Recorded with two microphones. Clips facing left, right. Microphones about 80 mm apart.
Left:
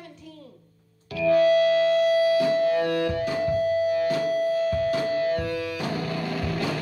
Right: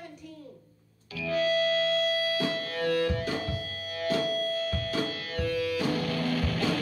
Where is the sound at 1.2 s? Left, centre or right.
Left.